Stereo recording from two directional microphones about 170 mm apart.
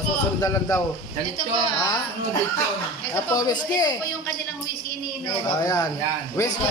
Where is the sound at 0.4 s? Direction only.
15° left (ahead or behind).